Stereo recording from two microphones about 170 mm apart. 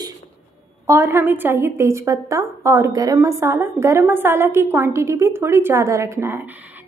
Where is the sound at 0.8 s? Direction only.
15° right (ahead or behind).